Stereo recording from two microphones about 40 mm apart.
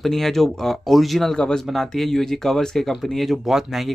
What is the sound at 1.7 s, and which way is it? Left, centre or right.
Speech, centre.